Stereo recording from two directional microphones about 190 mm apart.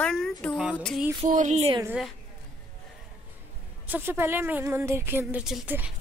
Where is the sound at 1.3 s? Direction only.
40° right (ahead or behind).